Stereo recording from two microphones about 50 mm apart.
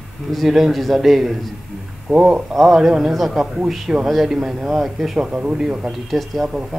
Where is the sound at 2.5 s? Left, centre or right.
Centre.